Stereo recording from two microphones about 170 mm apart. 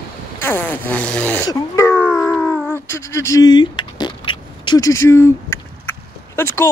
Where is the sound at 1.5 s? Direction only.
15° left (ahead or behind).